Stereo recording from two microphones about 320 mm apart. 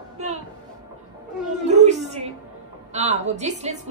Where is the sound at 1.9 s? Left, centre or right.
Right.